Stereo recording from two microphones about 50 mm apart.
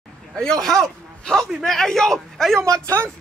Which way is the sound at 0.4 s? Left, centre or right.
Centre.